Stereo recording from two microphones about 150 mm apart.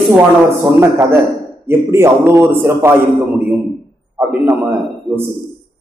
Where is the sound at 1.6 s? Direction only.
15° right (ahead or behind).